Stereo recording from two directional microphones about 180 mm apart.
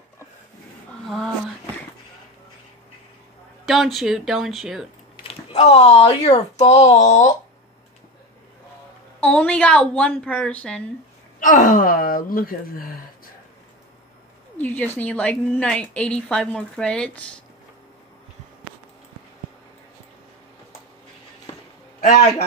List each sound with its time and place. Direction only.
1.0 s speech: centre (ahead or behind)
3.6 s speech: centre (ahead or behind)
5.2 s speech: 35° left (ahead or behind)
9.2 s a woman's voice: 5° left (ahead or behind)
11.3 s speech: 50° left (ahead or behind)
14.6 s a woman's voice: 10° left (ahead or behind)